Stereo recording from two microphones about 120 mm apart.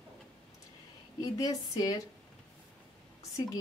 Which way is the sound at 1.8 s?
30° left (ahead or behind).